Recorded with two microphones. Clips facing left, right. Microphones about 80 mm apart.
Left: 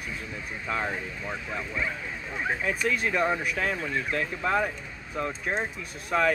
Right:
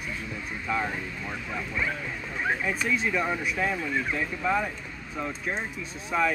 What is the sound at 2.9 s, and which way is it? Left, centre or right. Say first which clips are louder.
Speech: left 1 dB; left.